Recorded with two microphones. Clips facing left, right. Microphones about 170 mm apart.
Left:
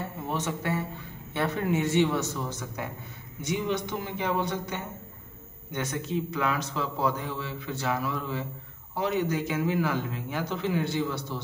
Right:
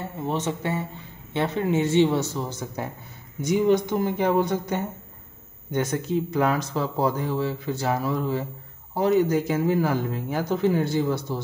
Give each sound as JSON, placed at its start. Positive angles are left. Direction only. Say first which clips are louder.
{"t": 0.3, "sound": "a man's voice", "louder": "right 3 dB", "side_deg": -25}